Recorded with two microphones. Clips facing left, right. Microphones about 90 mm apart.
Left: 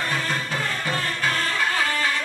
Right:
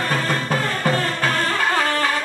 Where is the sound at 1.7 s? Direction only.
55° right (ahead or behind).